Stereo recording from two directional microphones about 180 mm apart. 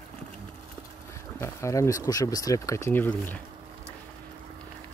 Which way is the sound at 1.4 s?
15° left (ahead or behind).